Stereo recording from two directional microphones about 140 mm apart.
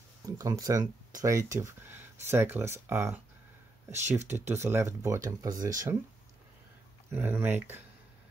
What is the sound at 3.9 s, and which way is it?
Speech, 55° right (ahead or behind).